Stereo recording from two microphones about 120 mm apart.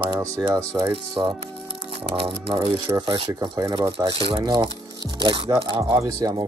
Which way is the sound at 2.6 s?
30° right (ahead or behind).